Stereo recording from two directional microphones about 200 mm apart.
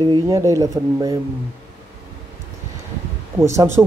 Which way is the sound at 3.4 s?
15° right (ahead or behind).